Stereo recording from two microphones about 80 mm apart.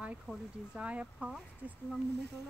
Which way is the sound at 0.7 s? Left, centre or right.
Centre.